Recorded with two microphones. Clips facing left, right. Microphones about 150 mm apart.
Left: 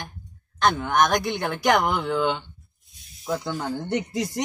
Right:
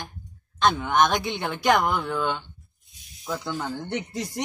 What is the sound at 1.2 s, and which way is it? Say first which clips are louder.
Speech: left 1 dB; 5° left (ahead or behind).